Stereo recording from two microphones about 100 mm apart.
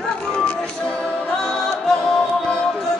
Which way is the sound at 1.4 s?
5° left (ahead or behind).